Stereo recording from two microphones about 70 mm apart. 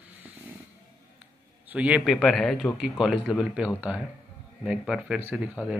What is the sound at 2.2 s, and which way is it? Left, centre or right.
Speech, centre.